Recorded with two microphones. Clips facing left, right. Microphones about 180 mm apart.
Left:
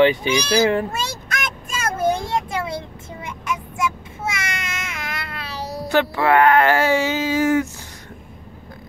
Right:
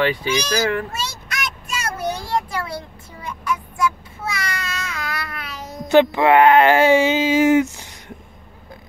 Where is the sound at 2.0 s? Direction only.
50° left (ahead or behind).